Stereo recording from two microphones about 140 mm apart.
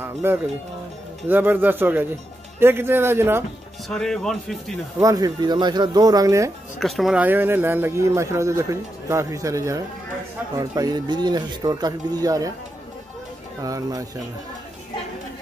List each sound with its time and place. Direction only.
0.0 s a man's voice: 15° right (ahead or behind)
3.9 s a man's voice: 5° left (ahead or behind)
5.0 s speech: 25° right (ahead or behind)
6.8 s speech: centre (ahead or behind); by 12.5 s 25° right (ahead or behind)
13.6 s speech: 25° right (ahead or behind)